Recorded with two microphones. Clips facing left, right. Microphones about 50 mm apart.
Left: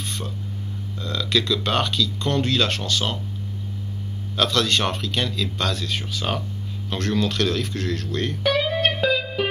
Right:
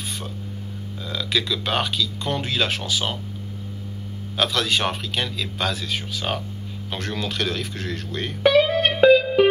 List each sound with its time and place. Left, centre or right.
1.0 s speech: centre
4.4 s speech: centre
8.5 s music: right